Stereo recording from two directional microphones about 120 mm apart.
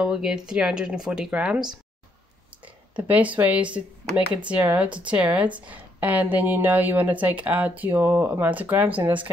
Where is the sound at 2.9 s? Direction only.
10° right (ahead or behind).